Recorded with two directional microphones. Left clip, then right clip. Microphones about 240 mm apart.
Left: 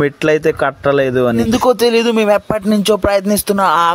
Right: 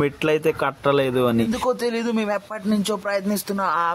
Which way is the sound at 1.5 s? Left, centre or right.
Left.